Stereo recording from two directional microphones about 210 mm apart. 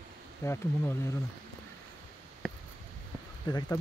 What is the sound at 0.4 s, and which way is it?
Speech, 10° left (ahead or behind).